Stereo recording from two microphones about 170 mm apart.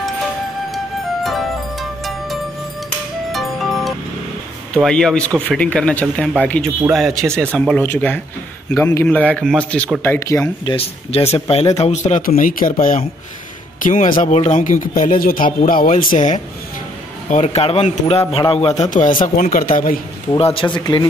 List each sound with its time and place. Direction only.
1.2 s music: centre (ahead or behind)
4.7 s a man's voice: 5° left (ahead or behind)
10.6 s speech: 30° left (ahead or behind); by 12.7 s 55° left (ahead or behind)
14.2 s speech: 40° left (ahead or behind)
20.3 s speech: 35° left (ahead or behind)